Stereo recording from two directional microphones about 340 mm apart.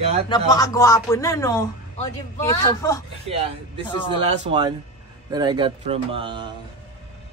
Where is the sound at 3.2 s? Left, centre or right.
Centre.